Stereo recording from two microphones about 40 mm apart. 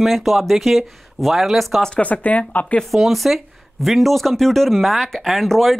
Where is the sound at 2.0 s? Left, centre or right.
Left.